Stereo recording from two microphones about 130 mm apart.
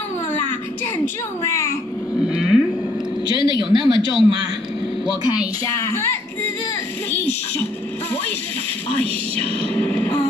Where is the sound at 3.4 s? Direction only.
40° left (ahead or behind).